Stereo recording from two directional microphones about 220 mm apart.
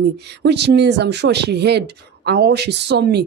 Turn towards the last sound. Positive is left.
turn(degrees=-50)  # may be behind; listen again after turning